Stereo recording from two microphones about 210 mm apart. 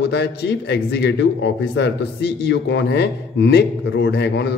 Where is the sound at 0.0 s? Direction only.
50° left (ahead or behind).